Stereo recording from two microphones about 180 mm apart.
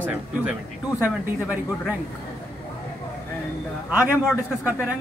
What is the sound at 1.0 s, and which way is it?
Speech, 10° right (ahead or behind).